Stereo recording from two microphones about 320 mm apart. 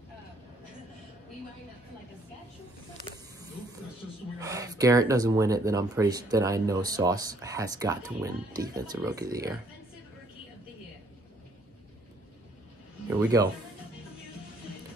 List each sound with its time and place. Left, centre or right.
4.4 s speech: centre
13.2 s speech: centre